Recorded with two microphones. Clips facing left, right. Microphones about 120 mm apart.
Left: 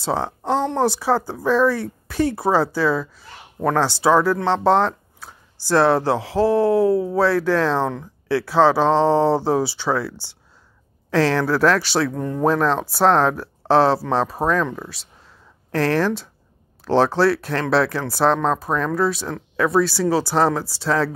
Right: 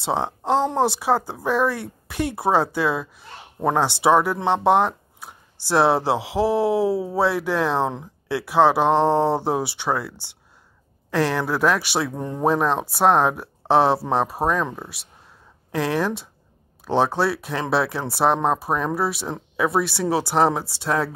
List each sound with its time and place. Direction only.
0.0 s speech: 20° right (ahead or behind)
5.7 s speech: 25° right (ahead or behind)
6.9 s speech: 5° right (ahead or behind)
7.2 s speech: 20° right (ahead or behind)
15.7 s speech: 10° right (ahead or behind)
17.8 s speech: 25° right (ahead or behind)